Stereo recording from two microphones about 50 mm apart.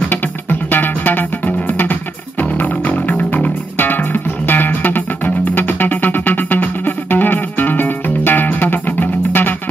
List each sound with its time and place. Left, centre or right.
0.1 s music: left